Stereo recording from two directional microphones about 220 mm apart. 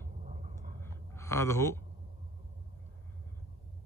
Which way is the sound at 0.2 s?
35° right (ahead or behind).